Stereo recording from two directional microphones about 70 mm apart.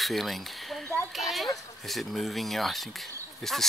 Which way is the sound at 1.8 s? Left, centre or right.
Centre.